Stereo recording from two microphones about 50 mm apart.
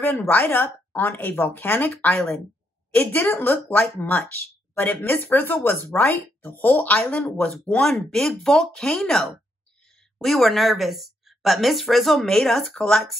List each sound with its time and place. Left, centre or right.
0.3 s speech: left
2.1 s speech: centre
2.9 s a woman's voice: left
7.5 s a woman's voice: centre
12.7 s speech: centre